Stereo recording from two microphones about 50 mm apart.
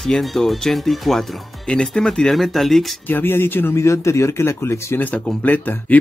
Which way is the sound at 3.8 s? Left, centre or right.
Left.